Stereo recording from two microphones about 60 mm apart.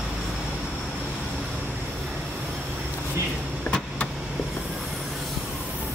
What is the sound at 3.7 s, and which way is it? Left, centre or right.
Vehicle, left.